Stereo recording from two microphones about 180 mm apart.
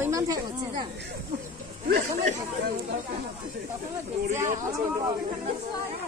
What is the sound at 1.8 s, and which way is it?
Speech, 50° right (ahead or behind).